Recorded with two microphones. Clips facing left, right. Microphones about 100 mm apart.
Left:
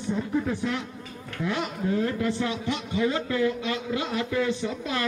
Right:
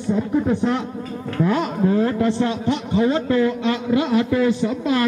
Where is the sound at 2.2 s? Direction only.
30° right (ahead or behind).